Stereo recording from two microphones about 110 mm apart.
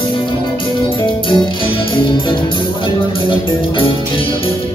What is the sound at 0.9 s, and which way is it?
Music, 50° left (ahead or behind).